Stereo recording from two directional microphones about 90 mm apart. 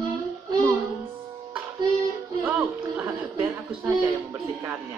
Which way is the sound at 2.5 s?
20° right (ahead or behind).